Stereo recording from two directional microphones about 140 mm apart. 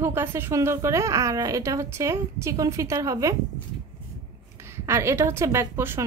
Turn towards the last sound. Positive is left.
turn(degrees=-15)  # may be behind; listen again after turning